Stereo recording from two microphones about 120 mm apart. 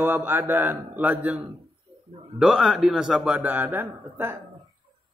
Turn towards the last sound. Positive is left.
turn(degrees=-15)  # may be behind; listen again after turning